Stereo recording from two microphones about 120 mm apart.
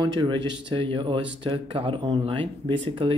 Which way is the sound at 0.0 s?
40° right (ahead or behind).